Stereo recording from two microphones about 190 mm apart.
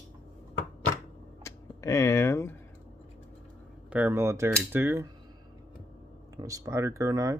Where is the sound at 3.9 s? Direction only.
10° right (ahead or behind).